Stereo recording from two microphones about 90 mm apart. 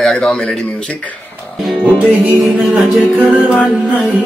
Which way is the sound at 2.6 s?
Centre (ahead or behind).